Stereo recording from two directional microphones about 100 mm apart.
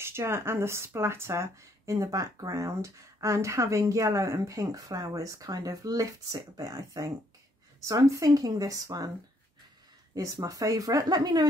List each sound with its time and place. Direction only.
0.0 s speech: 25° right (ahead or behind)
10.1 s speech: 35° right (ahead or behind)